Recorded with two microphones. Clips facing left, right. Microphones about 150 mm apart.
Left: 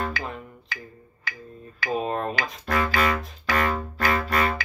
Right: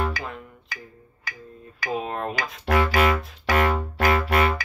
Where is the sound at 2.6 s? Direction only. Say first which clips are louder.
Right 4 dB; 80° right.